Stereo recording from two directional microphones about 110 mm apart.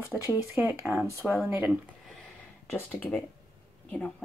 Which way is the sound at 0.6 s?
15° right (ahead or behind).